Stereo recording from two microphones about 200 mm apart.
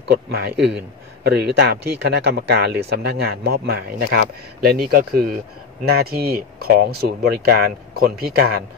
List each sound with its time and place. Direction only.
0.0 s a man's voice: 55° right (ahead or behind)